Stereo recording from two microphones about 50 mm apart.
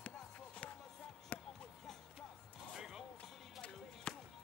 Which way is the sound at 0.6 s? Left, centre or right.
Left.